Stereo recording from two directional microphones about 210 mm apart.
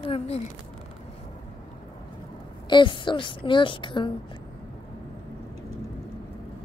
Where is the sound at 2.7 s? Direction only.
25° left (ahead or behind).